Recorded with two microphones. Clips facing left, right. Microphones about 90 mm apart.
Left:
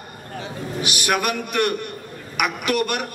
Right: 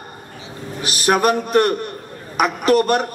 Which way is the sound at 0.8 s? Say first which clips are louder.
Right 7 dB; 35° right (ahead or behind).